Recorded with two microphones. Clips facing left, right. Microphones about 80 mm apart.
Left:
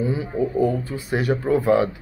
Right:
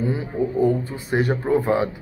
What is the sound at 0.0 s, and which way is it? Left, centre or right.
Speech, right.